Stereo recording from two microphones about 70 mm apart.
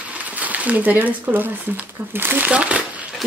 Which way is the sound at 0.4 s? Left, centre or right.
Right.